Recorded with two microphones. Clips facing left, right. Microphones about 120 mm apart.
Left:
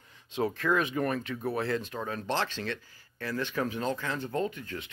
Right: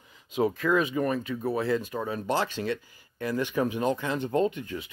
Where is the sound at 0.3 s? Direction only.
10° right (ahead or behind).